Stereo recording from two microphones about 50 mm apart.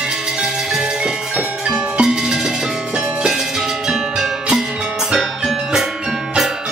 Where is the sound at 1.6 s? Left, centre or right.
Centre.